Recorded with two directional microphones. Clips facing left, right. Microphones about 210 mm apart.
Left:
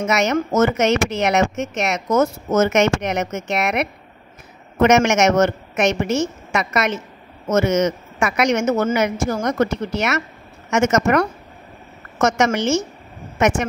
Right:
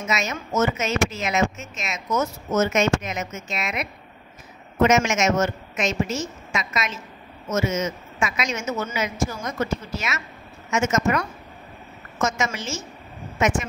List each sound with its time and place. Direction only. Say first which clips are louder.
0.0 s a woman's voice: left 9 dB; 70° left (ahead or behind)
2.0 s a woman's voice: left 5 dB; 50° left (ahead or behind); by 11.2 s 70° left (ahead or behind)
12.4 s a woman's voice: left 9 dB; 65° left (ahead or behind)